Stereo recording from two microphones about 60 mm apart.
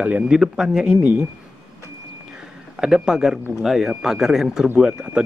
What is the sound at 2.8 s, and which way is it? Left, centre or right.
Speech, centre.